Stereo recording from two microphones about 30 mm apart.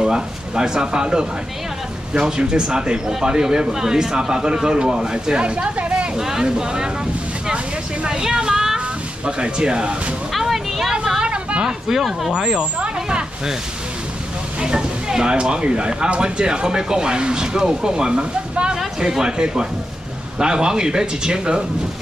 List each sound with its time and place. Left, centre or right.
0.0 s speech: right
6.1 s speech: centre
7.5 s a sound: right
8.2 s speech: right
10.4 s a sound: centre
10.9 s vehicle: right
12.3 s speech: right
14.6 s speech: right